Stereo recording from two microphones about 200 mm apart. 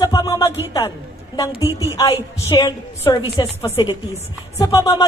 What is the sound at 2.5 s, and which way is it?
A woman's voice, 15° left (ahead or behind).